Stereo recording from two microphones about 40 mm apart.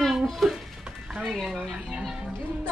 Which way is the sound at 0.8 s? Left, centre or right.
Centre.